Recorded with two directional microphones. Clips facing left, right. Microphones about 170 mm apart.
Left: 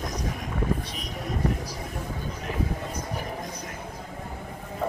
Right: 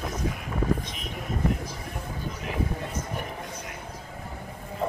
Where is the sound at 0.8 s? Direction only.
40° left (ahead or behind).